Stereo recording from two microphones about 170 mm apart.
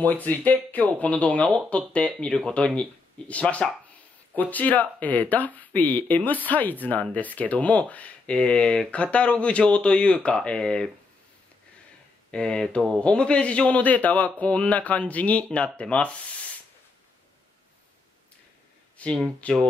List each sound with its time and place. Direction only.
0.0 s speech: 10° left (ahead or behind)
12.3 s speech: 5° left (ahead or behind)
19.0 s speech: 5° left (ahead or behind)